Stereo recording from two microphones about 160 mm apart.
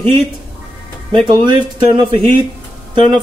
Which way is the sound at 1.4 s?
30° right (ahead or behind).